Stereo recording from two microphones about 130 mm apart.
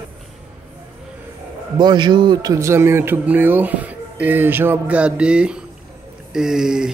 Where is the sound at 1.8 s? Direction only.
35° right (ahead or behind).